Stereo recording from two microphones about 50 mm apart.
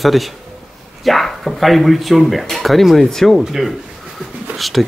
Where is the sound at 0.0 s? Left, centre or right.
Centre.